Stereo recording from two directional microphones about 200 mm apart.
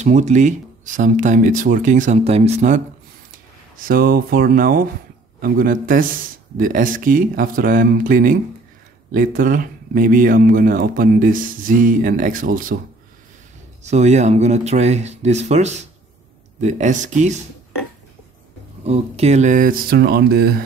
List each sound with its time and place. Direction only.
0.0 s speech: 35° right (ahead or behind)
13.8 s speech: 35° right (ahead or behind)
18.9 s speech: 30° right (ahead or behind); by 20.6 s 50° right (ahead or behind)